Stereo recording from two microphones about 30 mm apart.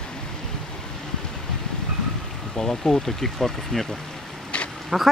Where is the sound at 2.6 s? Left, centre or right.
Centre.